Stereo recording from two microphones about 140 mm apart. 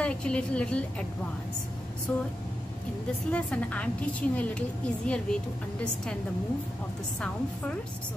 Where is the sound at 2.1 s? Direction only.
10° left (ahead or behind).